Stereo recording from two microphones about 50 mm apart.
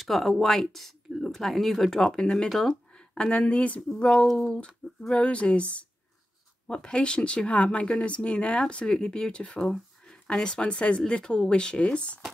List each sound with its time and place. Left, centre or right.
0.0 s speech: centre; by 12.2 s left